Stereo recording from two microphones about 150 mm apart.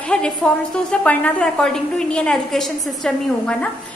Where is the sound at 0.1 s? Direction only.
5° left (ahead or behind).